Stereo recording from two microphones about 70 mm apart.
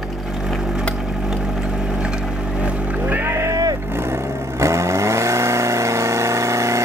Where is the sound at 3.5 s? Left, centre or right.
Right.